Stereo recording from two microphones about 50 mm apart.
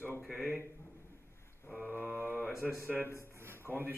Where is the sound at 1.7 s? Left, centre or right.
Centre.